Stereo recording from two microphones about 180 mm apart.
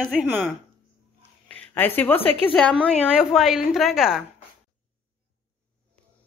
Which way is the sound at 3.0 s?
5° right (ahead or behind).